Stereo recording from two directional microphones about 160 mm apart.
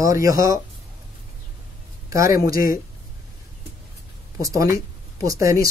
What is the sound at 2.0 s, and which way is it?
Speech, 20° right (ahead or behind).